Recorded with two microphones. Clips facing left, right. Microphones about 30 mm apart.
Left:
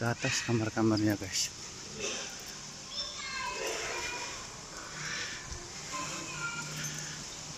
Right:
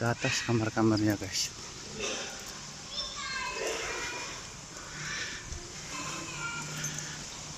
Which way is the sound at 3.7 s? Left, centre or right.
Centre.